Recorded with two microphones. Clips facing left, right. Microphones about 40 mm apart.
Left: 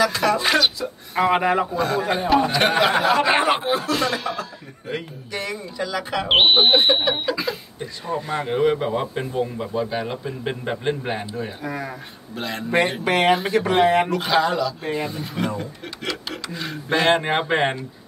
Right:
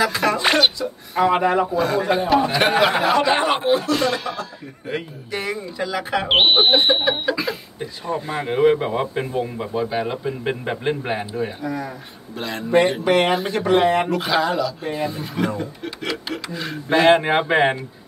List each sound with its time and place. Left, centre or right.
0.0 s speech: centre
0.7 s speech: centre
4.9 s speech: centre
6.2 s speech: centre
11.6 s speech: left
12.4 s speech: centre